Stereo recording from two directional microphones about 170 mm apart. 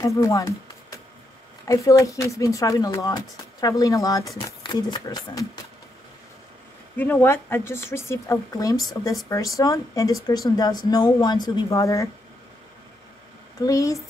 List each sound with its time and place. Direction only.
0.0 s speech: 20° left (ahead or behind)
7.0 s a woman's voice: 10° left (ahead or behind)
13.6 s speech: 20° left (ahead or behind)